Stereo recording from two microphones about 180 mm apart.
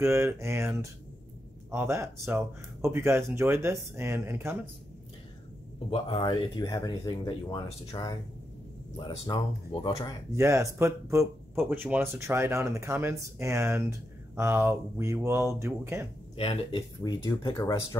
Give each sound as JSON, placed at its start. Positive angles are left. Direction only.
{"t": 0.0, "sound": "speech", "side_deg": -15}
{"t": 5.9, "sound": "speech", "side_deg": 25}
{"t": 10.3, "sound": "speech", "side_deg": -15}
{"t": 16.3, "sound": "speech", "side_deg": 30}